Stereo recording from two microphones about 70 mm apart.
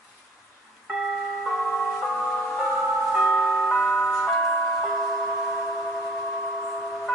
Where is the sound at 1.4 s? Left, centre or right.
Centre.